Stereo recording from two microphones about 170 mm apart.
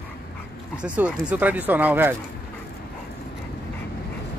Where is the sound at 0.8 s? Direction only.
5° right (ahead or behind).